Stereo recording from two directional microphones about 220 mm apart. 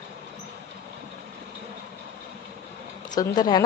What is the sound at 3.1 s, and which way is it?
Speech, 20° left (ahead or behind).